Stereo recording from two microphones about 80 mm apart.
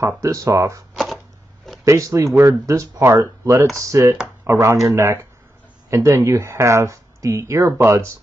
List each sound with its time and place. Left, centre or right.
0.2 s speech: right
0.9 s a sound: centre
1.9 s speech: right